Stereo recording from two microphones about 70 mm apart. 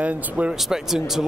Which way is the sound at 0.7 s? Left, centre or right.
Centre.